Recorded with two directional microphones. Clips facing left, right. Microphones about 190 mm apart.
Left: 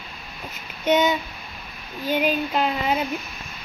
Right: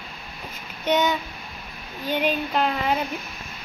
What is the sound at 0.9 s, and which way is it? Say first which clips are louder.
Speech: left 2 dB; 10° left (ahead or behind).